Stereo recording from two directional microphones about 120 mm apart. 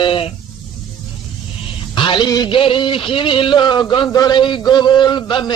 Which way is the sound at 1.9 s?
40° left (ahead or behind).